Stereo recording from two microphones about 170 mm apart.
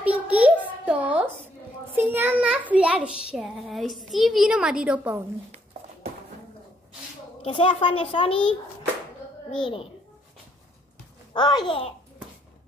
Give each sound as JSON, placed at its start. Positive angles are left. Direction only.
{"t": 0.0, "sound": "a sound", "side_deg": -10}
{"t": 2.0, "sound": "a child's voice", "side_deg": -10}
{"t": 7.4, "sound": "a child's voice", "side_deg": 30}
{"t": 9.6, "sound": "a child's voice", "side_deg": 30}
{"t": 11.3, "sound": "a child's voice", "side_deg": 25}